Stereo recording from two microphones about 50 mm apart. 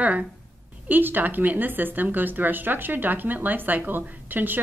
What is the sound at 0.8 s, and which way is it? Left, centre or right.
Speech, right.